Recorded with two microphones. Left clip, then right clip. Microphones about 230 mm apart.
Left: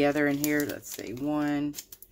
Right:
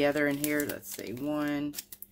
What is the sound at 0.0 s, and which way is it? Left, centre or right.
Speech, centre.